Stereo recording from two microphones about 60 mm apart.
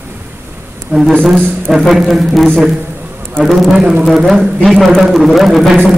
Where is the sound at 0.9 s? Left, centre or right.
Centre.